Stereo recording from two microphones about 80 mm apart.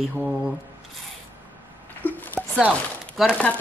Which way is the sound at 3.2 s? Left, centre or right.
Centre.